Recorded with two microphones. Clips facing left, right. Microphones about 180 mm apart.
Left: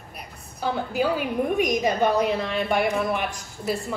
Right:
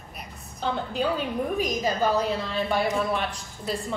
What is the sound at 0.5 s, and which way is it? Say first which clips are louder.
A woman's voice: left 3 dB; 10° left (ahead or behind).